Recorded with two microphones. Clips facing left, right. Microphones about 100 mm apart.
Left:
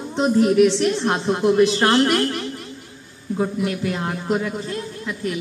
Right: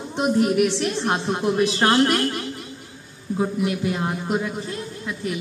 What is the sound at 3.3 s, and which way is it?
A man's voice, 15° right (ahead or behind).